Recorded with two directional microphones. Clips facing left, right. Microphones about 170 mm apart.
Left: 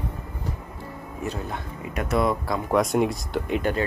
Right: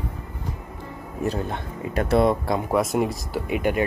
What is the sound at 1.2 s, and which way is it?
Speech, 30° right (ahead or behind).